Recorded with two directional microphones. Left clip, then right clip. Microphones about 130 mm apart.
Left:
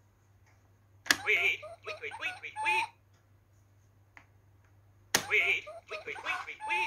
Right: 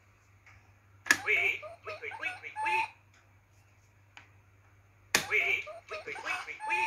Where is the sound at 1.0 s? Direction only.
25° left (ahead or behind).